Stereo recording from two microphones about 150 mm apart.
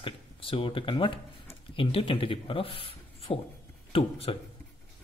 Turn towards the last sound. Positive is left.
turn(degrees=40)  # may be behind; listen again after turning